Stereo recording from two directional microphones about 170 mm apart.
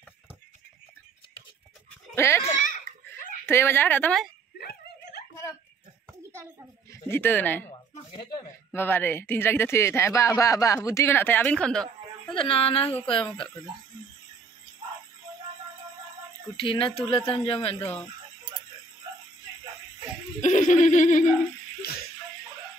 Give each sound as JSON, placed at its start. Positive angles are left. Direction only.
{"t": 2.1, "sound": "speech", "side_deg": 15}
{"t": 4.6, "sound": "a sound", "side_deg": 65}
{"t": 6.9, "sound": "speech", "side_deg": 15}
{"t": 8.7, "sound": "speech", "side_deg": 10}
{"t": 12.4, "sound": "speech", "side_deg": 35}
{"t": 12.8, "sound": "speech", "side_deg": 10}
{"t": 16.5, "sound": "speech", "side_deg": 30}
{"t": 20.3, "sound": "speech", "side_deg": 45}